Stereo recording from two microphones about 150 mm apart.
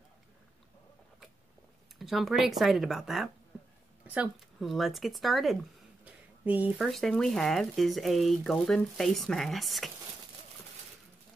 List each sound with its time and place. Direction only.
2.0 s speech: centre (ahead or behind)
6.0 s a sound: 10° right (ahead or behind)
6.9 s speech: centre (ahead or behind)